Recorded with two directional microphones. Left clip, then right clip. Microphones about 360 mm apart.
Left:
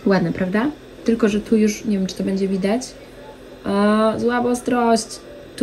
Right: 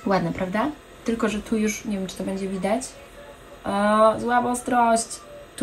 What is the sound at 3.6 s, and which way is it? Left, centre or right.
Speech, left.